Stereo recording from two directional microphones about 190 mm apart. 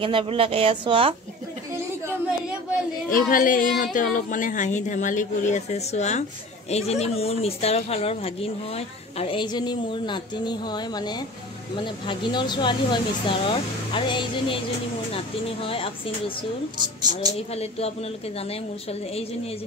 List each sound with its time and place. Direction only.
0.0 s speech: 30° right (ahead or behind)
3.1 s speech: 45° left (ahead or behind); by 16.3 s 30° left (ahead or behind)
17.5 s speech: 35° left (ahead or behind)